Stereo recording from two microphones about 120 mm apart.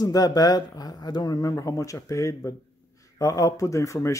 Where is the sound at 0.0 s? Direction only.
30° left (ahead or behind).